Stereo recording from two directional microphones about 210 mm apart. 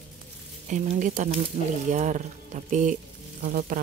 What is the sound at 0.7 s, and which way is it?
Speech, 35° right (ahead or behind).